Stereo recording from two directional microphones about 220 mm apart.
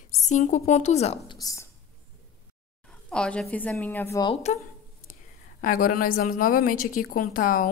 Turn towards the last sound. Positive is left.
turn(degrees=40)  # may be behind; listen again after turning